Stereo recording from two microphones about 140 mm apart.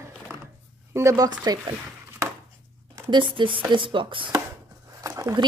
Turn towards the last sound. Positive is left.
turn(degrees=-25)  # may be behind; listen again after turning